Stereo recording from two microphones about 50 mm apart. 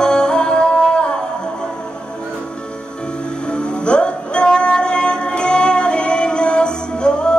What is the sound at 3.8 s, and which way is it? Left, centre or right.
Music, centre.